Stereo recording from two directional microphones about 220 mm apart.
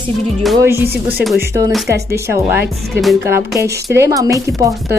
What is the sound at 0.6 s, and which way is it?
Speech, 10° right (ahead or behind).